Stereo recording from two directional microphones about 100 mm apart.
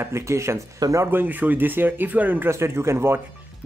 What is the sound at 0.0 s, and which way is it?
Speech, 25° right (ahead or behind).